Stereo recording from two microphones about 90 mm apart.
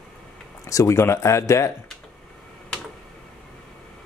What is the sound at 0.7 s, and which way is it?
Speech, 35° left (ahead or behind).